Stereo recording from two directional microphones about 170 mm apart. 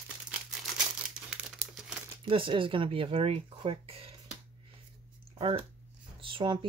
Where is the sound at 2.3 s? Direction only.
30° right (ahead or behind).